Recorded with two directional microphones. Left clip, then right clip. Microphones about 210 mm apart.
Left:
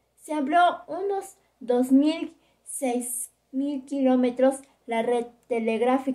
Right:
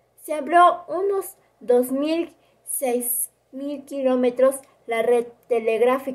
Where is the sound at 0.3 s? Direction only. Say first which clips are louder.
Right 5 dB; 15° right (ahead or behind).